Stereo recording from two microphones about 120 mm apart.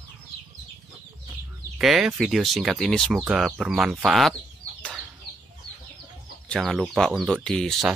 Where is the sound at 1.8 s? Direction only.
5° right (ahead or behind).